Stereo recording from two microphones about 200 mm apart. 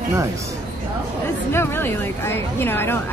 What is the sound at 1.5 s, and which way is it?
A woman's voice, 10° left (ahead or behind).